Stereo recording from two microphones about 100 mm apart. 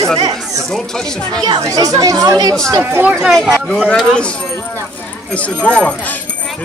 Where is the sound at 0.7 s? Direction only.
5° left (ahead or behind).